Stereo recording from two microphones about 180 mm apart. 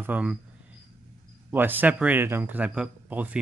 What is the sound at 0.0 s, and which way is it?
Speech, 10° right (ahead or behind).